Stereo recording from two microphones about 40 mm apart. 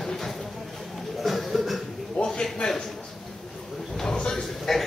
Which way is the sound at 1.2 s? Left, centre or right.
Centre.